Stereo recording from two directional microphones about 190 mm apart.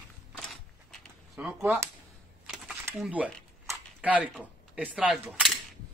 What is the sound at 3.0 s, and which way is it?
A man's voice, 5° right (ahead or behind).